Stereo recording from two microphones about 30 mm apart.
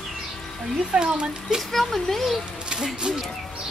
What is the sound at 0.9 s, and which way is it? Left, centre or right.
Speech, right.